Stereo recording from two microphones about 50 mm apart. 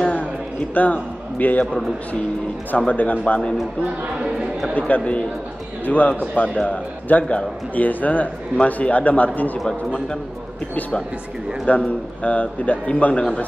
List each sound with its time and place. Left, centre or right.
0.0 s a sound: left
0.7 s a man's voice: left
2.9 s a man's voice: left
4.0 s speech: right
4.7 s a man's voice: left
11.7 s a man's voice: left